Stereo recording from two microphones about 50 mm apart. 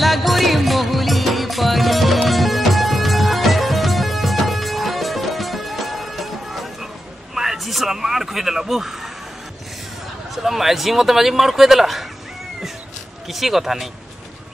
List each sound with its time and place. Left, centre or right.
0.0 s music: centre
7.3 s a sound: centre
10.3 s speech: centre
13.3 s speech: centre